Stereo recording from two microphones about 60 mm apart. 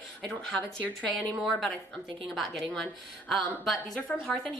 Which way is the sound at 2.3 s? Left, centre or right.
Centre.